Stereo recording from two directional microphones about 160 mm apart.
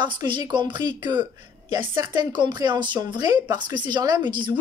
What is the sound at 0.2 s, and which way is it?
Speech, 30° right (ahead or behind).